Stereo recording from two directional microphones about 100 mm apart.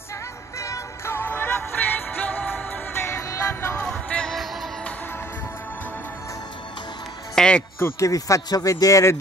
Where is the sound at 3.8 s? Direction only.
10° left (ahead or behind).